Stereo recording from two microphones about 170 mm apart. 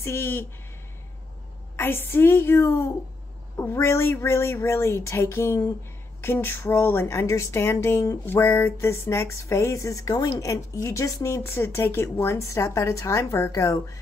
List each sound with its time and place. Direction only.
0.0 s speech: 15° left (ahead or behind)
1.8 s speech: 15° left (ahead or behind)